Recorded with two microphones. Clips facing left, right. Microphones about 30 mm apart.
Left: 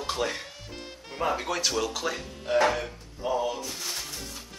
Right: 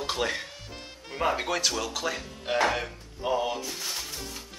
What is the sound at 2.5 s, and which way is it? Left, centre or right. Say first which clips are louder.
Speech: left 2 dB; right.